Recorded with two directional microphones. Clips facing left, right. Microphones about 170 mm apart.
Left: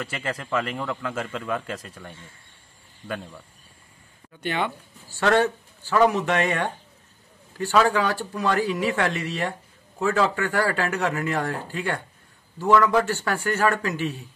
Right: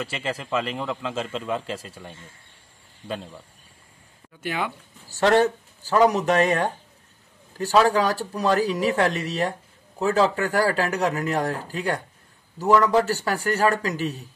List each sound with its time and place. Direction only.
0.0 s a man's voice: 25° right (ahead or behind)
4.4 s speech: 5° right (ahead or behind)
5.0 s a sound: 40° right (ahead or behind)
5.4 s speech: 40° right (ahead or behind)
7.8 s speech: 40° right (ahead or behind)
12.7 s a man's voice: 20° right (ahead or behind)
13.0 s speech: 35° right (ahead or behind)